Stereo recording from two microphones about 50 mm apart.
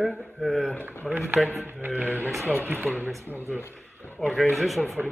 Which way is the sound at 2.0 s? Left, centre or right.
Right.